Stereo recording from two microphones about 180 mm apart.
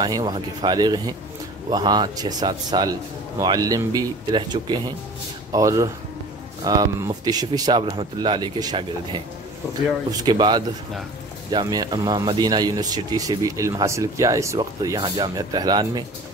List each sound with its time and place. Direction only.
0.0 s speech: 25° right (ahead or behind)
10.2 s speech: 25° right (ahead or behind)